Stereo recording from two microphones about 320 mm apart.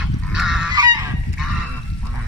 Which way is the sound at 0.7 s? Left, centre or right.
Centre.